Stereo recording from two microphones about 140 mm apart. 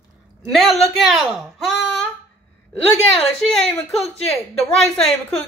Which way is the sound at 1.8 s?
10° left (ahead or behind).